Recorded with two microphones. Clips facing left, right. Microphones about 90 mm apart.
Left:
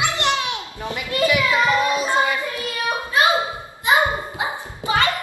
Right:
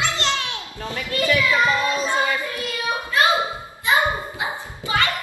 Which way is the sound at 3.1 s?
20° left (ahead or behind).